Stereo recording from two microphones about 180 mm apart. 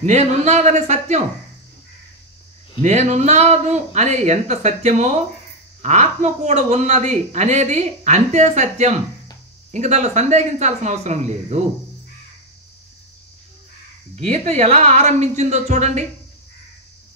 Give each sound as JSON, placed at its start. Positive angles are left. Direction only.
{"t": 0.0, "sound": "speech", "side_deg": -40}
{"t": 2.8, "sound": "speech", "side_deg": -40}
{"t": 14.1, "sound": "speech", "side_deg": -40}